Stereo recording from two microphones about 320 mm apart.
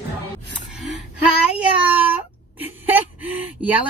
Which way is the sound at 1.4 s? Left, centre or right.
Centre.